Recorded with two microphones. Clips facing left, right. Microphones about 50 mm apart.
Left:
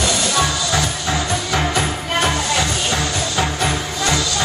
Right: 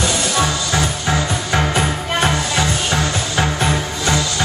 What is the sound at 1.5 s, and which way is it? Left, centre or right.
Music, right.